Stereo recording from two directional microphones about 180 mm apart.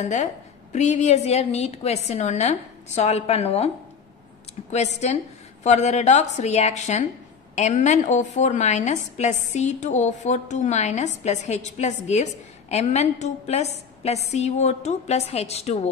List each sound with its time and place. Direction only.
0.0 s a woman's voice: 40° left (ahead or behind)